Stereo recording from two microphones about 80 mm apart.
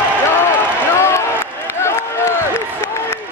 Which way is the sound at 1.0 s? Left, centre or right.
Left.